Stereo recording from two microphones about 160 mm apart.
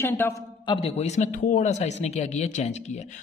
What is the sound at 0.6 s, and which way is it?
Speech, 35° left (ahead or behind).